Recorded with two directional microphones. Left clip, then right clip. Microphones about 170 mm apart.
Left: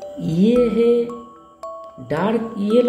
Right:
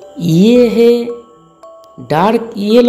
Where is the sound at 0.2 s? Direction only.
20° right (ahead or behind).